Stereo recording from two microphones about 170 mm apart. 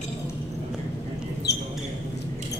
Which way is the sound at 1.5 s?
80° left.